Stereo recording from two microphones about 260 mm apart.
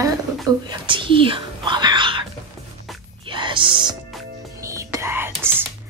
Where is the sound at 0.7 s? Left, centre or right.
Centre.